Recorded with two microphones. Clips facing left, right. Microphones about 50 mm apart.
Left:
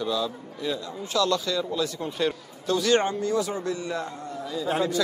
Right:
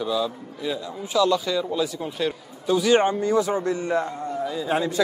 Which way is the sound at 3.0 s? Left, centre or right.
Right.